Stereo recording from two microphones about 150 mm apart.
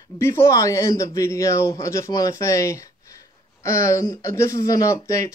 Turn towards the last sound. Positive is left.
turn(degrees=20)  # may be behind; listen again after turning